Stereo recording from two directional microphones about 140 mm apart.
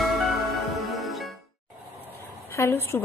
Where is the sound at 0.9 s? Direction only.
Centre (ahead or behind).